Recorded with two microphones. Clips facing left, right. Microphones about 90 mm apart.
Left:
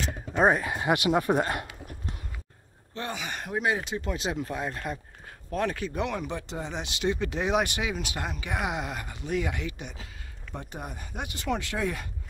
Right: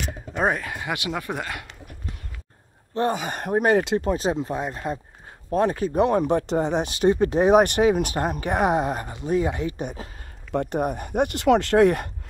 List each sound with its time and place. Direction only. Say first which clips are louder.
0.6 s speech: left 3 dB; 20° left (ahead or behind)
2.9 s speech: right 10 dB; 40° right (ahead or behind)
4.0 s speech: right 8 dB; 35° right (ahead or behind); by 4.8 s 20° right (ahead or behind)
5.5 s speech: right 8 dB; 35° right (ahead or behind); by 6.9 s 55° right (ahead or behind)
6.9 s speech: right 6 dB; 40° right (ahead or behind)
10.5 s speech: right 15 dB; 65° right (ahead or behind)